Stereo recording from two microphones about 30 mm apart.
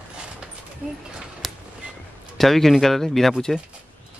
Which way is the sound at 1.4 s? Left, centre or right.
Centre.